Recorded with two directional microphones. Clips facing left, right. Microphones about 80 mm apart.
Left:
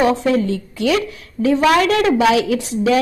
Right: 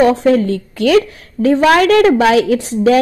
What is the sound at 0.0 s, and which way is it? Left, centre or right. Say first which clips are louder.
A woman's voice: right 5 dB; right.